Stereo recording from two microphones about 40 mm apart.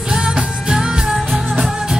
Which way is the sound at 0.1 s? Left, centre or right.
Centre.